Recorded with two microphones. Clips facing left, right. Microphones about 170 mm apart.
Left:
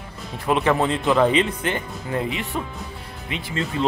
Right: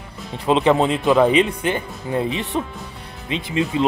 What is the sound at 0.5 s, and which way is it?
Speech, 20° right (ahead or behind).